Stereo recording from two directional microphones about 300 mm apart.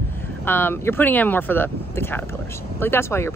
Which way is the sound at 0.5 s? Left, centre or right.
Centre.